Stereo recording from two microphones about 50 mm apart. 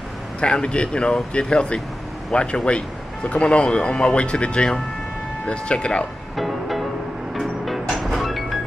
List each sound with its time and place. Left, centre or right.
0.4 s speech: centre
6.3 s music: centre